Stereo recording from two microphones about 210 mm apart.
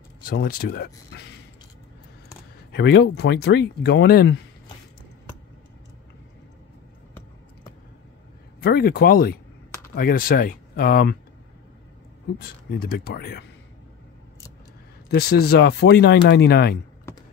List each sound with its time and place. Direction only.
0.3 s speech: 45° left (ahead or behind)
2.7 s speech: 55° left (ahead or behind)
8.5 s speech: 45° left (ahead or behind)
12.4 s speech: 45° left (ahead or behind)
15.0 s speech: 50° left (ahead or behind)